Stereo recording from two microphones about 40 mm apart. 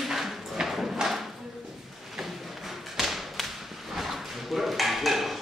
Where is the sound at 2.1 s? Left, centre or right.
Centre.